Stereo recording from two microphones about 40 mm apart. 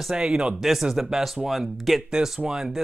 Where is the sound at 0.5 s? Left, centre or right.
Centre.